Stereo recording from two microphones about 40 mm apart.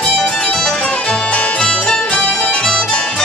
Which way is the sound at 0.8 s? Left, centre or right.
Left.